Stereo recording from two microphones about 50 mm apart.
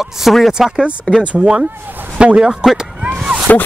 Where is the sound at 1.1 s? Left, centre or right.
Left.